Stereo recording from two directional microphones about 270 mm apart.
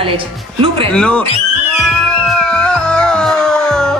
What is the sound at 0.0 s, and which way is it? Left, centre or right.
Speech, centre.